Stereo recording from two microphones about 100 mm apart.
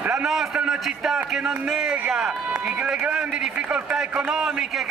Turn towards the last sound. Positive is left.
turn(degrees=-5)  # may be behind; listen again after turning